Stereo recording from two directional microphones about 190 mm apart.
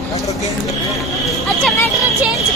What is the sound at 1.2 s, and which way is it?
Speech, centre (ahead or behind).